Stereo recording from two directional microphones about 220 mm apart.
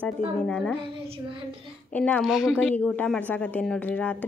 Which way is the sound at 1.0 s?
25° right (ahead or behind).